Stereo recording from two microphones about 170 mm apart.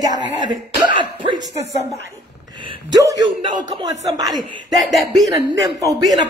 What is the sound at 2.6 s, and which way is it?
Speech, 20° right (ahead or behind).